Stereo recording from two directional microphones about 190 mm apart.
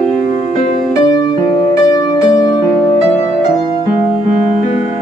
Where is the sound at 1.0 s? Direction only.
20° left (ahead or behind).